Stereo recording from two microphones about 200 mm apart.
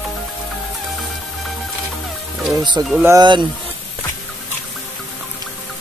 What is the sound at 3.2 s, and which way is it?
Speech, 25° right (ahead or behind).